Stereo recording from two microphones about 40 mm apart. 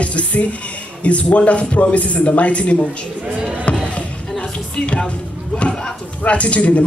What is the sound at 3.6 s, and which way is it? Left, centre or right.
Music, left.